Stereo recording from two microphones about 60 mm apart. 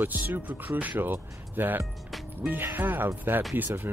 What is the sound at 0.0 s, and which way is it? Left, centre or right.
Speech, right.